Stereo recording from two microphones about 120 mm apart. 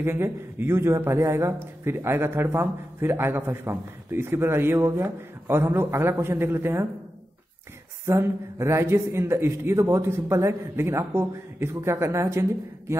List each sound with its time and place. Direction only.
0.0 s a man's voice: 20° right (ahead or behind)
8.0 s a man's voice: 25° right (ahead or behind)